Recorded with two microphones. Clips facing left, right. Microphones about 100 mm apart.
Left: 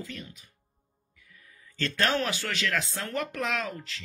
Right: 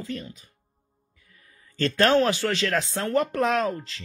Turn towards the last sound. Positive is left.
turn(degrees=-40)  # may be behind; listen again after turning